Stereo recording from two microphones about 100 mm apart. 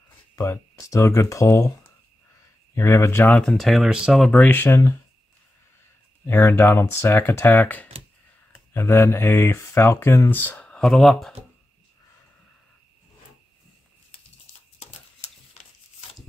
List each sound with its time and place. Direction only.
0.4 s speech: 30° left (ahead or behind)
2.7 s speech: 25° left (ahead or behind)
3.3 s speech: 10° left (ahead or behind)
4.3 s speech: 15° left (ahead or behind)
6.6 s speech: 25° left (ahead or behind); by 11.3 s centre (ahead or behind)
15.0 s a sound: 90° left